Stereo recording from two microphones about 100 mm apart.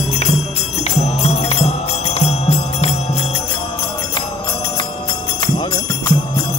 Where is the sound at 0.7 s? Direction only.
90° left.